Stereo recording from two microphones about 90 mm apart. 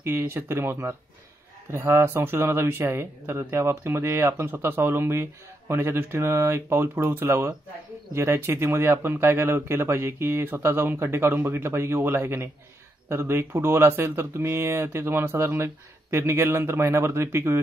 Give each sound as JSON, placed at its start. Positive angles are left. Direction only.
{"t": 0.0, "sound": "speech", "side_deg": -30}